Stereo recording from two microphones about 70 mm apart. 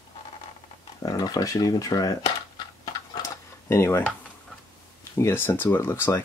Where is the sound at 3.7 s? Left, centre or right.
Left.